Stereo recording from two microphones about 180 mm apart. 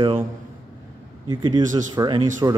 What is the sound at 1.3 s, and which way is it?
Speech, 25° right (ahead or behind).